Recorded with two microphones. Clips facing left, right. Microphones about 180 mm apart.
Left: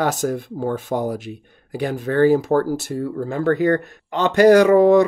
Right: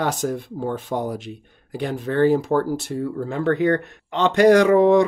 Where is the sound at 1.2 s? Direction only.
10° left (ahead or behind).